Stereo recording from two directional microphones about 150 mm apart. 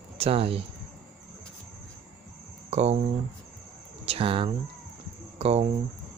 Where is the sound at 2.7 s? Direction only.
45° right (ahead or behind).